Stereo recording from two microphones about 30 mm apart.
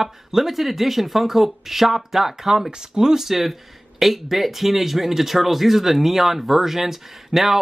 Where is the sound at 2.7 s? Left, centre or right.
Right.